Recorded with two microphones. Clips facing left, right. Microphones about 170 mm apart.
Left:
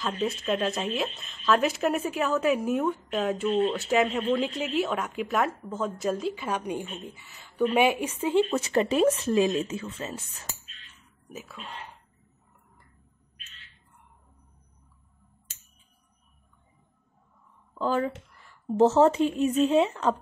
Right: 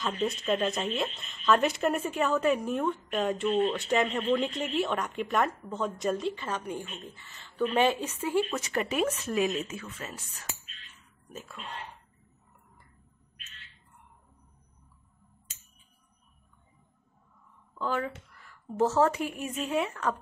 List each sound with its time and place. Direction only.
0.0 s speech: centre (ahead or behind); by 10.2 s 25° left (ahead or behind)
11.2 s speech: 5° left (ahead or behind)
17.7 s speech: 35° left (ahead or behind)